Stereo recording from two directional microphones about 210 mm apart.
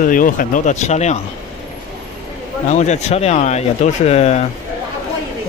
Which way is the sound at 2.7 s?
35° left (ahead or behind).